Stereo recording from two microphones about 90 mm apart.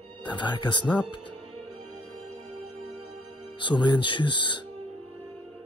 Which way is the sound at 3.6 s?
60° left (ahead or behind).